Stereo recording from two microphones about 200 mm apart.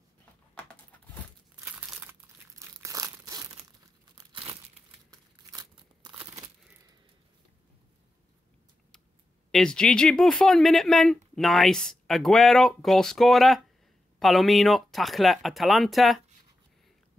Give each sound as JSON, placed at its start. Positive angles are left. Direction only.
{"t": 1.6, "sound": "crumpling", "side_deg": -5}
{"t": 9.5, "sound": "speech", "side_deg": 5}